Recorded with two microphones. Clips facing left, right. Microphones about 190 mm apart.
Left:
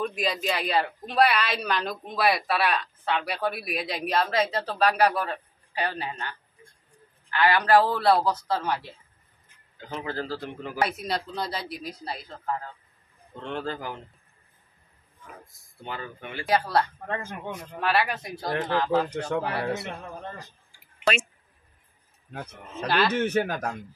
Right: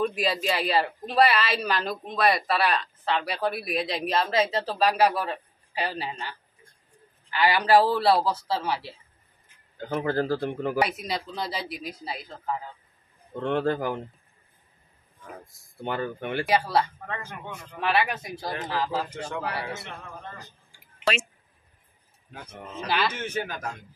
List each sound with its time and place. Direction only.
0.0 s a woman's voice: 5° right (ahead or behind)
9.8 s a man's voice: 50° right (ahead or behind)
10.8 s a woman's voice: centre (ahead or behind)
13.4 s a man's voice: 55° right (ahead or behind)
15.8 s a man's voice: 55° right (ahead or behind)
16.4 s a woman's voice: centre (ahead or behind)
19.3 s a man's voice: 55° left (ahead or behind)
22.8 s a woman's voice: centre (ahead or behind)
23.2 s a man's voice: 55° left (ahead or behind)